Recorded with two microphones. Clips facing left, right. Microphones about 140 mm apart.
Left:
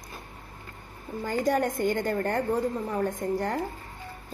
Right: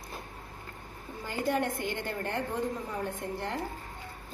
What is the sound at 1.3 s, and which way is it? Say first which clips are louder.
A woman's voice: left 5 dB; 40° left (ahead or behind).